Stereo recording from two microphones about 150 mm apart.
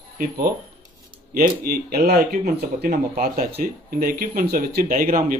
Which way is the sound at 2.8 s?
65° right (ahead or behind).